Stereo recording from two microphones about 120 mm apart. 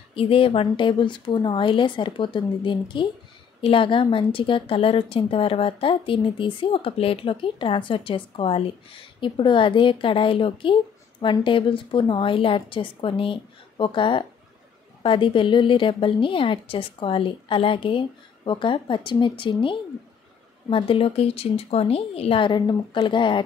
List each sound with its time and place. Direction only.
0.1 s a woman's voice: 50° left (ahead or behind)